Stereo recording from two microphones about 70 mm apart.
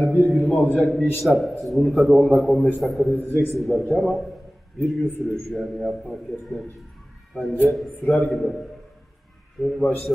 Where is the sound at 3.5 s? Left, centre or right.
Centre.